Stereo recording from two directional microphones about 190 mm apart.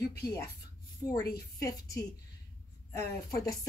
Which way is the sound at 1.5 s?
15° left (ahead or behind).